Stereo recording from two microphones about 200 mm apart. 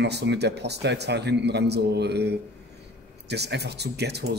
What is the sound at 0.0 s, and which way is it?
Speech, 55° right (ahead or behind).